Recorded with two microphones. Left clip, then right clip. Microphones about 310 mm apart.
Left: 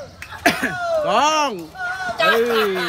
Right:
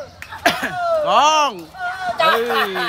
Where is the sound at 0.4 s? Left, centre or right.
Centre.